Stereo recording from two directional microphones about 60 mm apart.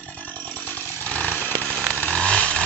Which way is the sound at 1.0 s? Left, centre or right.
Left.